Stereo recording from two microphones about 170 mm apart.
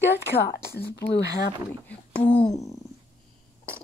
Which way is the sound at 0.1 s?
75° left (ahead or behind).